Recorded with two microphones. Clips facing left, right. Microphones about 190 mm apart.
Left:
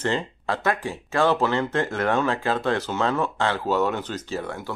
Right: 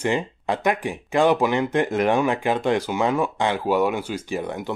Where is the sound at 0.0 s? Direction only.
15° right (ahead or behind).